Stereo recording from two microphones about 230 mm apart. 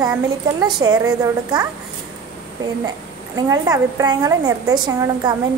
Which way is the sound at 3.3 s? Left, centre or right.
Centre.